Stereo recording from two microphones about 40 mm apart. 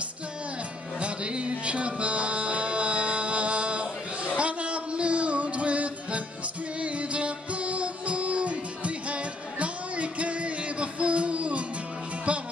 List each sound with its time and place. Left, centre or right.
0.9 s music: right